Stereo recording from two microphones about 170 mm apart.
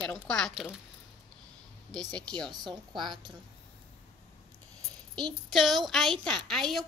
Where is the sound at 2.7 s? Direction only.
25° right (ahead or behind).